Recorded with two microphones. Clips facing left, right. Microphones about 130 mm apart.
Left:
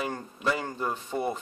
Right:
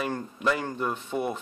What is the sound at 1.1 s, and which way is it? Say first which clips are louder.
Speech: right 1 dB; 10° right (ahead or behind).